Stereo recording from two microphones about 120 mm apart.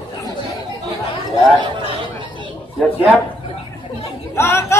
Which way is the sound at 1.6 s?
45° right (ahead or behind).